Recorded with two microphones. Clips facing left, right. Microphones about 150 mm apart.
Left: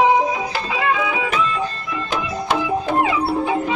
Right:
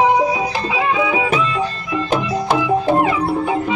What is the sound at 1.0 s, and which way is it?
Music, 25° right (ahead or behind).